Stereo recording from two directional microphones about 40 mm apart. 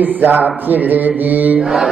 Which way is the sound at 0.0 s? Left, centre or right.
Right.